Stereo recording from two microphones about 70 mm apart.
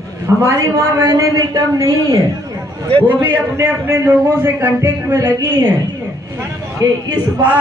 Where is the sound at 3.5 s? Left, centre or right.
Right.